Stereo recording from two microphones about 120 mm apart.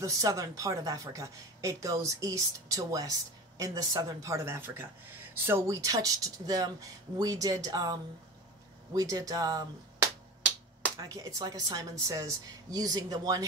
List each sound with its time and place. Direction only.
0.0 s speech: 30° right (ahead or behind)
11.0 s speech: 30° right (ahead or behind)